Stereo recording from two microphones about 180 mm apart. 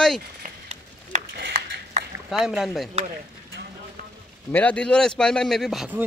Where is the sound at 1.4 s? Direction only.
60° right (ahead or behind).